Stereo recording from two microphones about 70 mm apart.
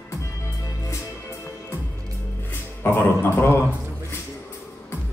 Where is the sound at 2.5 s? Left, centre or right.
Left.